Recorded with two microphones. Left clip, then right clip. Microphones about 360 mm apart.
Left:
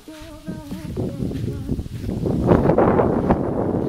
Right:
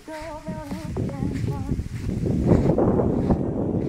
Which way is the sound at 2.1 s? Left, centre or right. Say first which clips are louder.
Left 4 dB; left.